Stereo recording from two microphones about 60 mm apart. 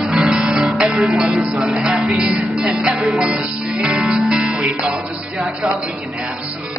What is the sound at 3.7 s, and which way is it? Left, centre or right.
Music, centre.